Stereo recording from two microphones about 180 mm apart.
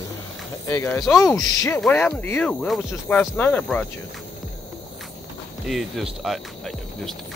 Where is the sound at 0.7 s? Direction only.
15° left (ahead or behind).